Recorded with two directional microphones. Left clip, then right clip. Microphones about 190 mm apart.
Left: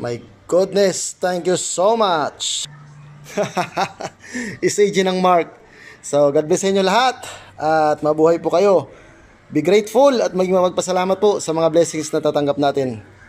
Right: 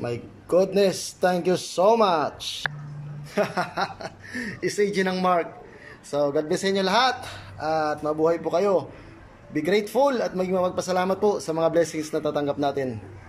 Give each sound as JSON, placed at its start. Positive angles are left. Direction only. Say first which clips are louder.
{"t": 0.0, "sound": "a man's voice", "louder": "left 5 dB", "side_deg": 0}